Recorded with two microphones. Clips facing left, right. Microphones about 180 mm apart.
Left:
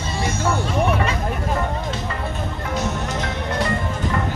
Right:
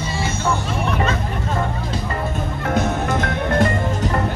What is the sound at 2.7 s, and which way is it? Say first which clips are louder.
Music: right 6 dB; 55° right (ahead or behind).